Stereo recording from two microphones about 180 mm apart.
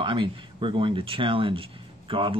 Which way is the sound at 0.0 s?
25° right (ahead or behind).